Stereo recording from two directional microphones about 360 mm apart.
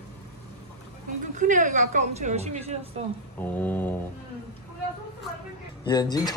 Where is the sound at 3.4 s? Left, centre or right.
Centre.